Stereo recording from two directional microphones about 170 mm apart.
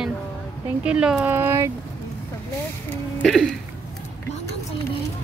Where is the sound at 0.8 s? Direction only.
5° right (ahead or behind).